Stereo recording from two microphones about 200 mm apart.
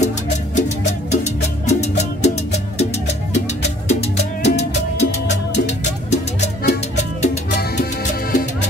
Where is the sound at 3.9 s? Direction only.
35° left (ahead or behind).